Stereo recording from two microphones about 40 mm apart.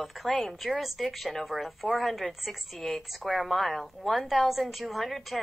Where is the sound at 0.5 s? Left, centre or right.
Centre.